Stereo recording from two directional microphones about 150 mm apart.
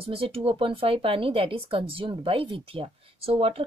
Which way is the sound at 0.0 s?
40° right (ahead or behind).